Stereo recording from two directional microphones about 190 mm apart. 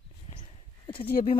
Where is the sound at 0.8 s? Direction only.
30° left (ahead or behind).